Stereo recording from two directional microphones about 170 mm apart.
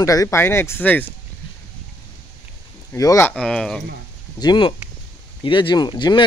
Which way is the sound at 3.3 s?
5° left (ahead or behind).